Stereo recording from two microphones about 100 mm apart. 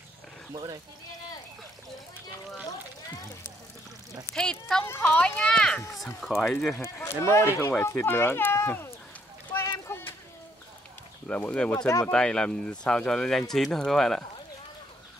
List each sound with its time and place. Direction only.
4.4 s speech: 5° left (ahead or behind)
4.8 s speech: 20° left (ahead or behind); by 6.8 s centre (ahead or behind)
6.8 s speech: 25° left (ahead or behind)
9.8 s a sound: 25° left (ahead or behind)
11.2 s speech: 15° left (ahead or behind)